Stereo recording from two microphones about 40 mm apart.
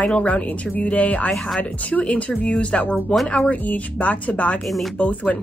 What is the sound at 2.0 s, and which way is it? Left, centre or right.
Speech, left.